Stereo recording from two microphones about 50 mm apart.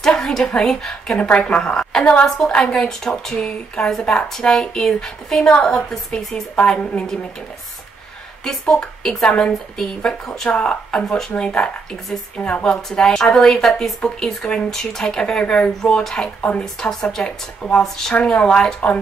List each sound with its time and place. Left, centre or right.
0.0 s a woman's voice: centre
1.1 s a woman's voice: left
8.7 s a woman's voice: centre
10.5 s a woman's voice: centre
12.4 s speech: left
12.6 s a woman's voice: centre